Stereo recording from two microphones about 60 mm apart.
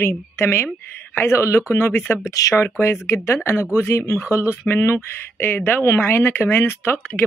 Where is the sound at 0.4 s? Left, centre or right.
Left.